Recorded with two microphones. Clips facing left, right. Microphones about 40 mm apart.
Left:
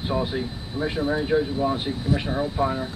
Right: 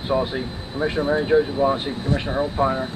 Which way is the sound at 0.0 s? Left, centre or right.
Centre.